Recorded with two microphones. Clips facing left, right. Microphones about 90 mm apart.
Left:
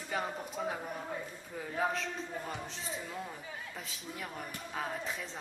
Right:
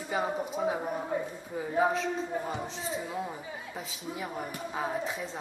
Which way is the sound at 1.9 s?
Centre (ahead or behind).